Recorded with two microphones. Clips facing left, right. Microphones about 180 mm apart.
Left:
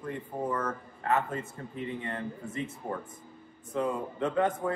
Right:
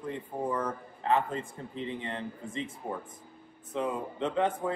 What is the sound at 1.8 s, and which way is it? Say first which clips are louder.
Speech: even; 25° right (ahead or behind).